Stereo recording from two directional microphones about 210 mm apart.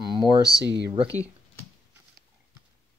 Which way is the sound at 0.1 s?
20° left (ahead or behind).